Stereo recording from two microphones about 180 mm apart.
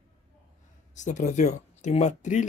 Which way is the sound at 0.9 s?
40° left (ahead or behind).